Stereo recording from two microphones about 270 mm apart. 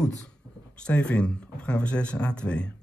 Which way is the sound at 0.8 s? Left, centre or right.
Centre.